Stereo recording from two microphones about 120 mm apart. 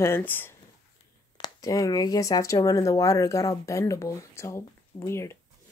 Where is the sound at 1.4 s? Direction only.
30° left (ahead or behind).